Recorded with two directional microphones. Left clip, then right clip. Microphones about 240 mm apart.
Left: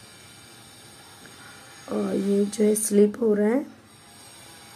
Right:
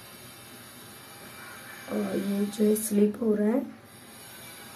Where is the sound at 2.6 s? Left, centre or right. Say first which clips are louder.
Left 4 dB; left.